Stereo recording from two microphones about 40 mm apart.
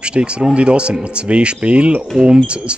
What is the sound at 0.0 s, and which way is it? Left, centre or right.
Speech, right.